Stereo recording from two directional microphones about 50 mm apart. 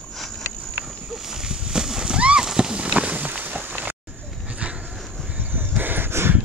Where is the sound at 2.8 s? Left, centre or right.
Right.